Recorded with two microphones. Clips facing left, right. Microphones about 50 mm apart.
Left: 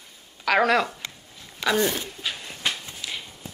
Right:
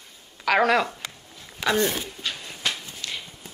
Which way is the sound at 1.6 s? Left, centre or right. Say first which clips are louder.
Even; centre.